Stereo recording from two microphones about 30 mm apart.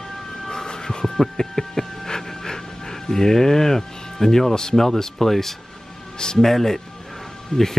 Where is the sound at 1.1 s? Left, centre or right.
Centre.